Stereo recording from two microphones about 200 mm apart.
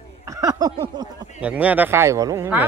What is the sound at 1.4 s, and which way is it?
Speech, 5° right (ahead or behind).